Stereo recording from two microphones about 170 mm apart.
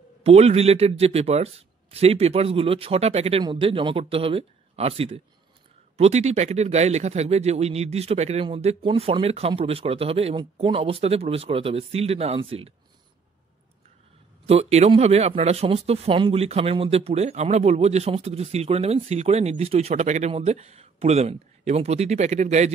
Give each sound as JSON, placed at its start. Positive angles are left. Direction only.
{"t": 0.2, "sound": "speech", "side_deg": -35}
{"t": 14.4, "sound": "speech", "side_deg": -40}